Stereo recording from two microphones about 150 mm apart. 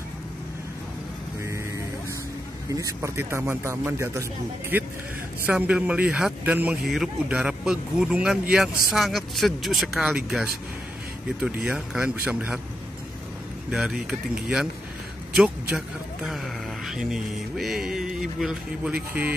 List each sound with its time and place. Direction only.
2.7 s speech: 20° right (ahead or behind)
13.7 s speech: 5° right (ahead or behind)